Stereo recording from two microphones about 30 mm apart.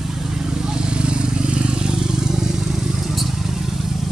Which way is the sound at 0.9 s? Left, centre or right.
Right.